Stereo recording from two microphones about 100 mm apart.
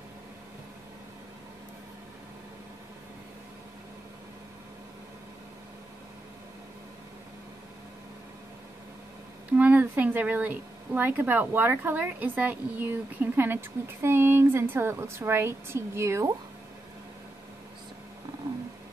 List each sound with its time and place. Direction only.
9.5 s speech: 15° right (ahead or behind)